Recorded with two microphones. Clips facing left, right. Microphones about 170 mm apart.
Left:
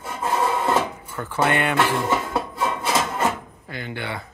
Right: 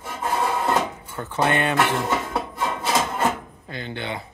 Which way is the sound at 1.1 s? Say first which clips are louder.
Even; 20° right (ahead or behind).